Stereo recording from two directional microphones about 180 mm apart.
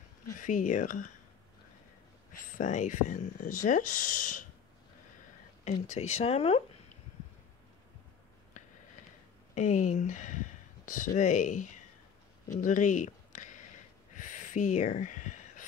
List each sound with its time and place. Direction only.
0.4 s speech: 45° left (ahead or behind)
2.5 s speech: 45° left (ahead or behind)
5.9 s speech: 35° left (ahead or behind)
9.6 s speech: 40° left (ahead or behind)
12.4 s a sound: 45° left (ahead or behind)